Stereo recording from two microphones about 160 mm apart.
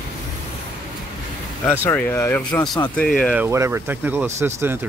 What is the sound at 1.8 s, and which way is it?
Speech, 15° left (ahead or behind).